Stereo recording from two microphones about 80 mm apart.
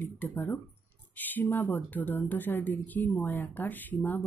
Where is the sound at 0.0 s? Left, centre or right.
Left.